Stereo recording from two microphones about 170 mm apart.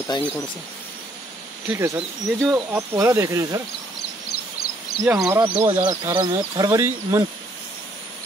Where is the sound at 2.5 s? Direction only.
15° right (ahead or behind).